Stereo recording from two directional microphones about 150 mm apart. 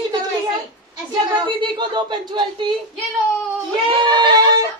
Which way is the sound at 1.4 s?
30° right (ahead or behind).